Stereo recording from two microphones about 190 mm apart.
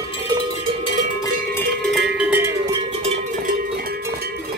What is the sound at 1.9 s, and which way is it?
Cowbell, 5° right (ahead or behind).